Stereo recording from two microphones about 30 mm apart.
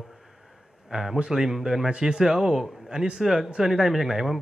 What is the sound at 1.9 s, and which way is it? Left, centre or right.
A man's voice, right.